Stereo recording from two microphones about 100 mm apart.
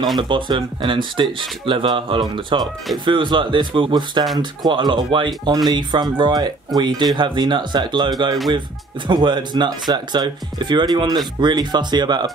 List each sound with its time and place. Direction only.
0.2 s speech: 55° right (ahead or behind)